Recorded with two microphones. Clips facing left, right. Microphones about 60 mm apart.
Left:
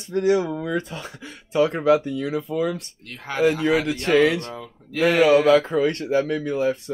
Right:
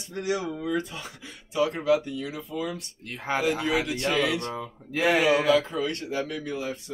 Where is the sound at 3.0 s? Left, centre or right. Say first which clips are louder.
Right 5 dB; centre.